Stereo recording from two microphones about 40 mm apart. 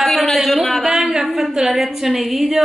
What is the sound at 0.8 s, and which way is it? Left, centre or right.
A woman's voice, centre.